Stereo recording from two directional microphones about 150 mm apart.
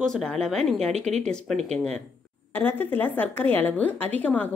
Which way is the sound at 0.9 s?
45° right (ahead or behind).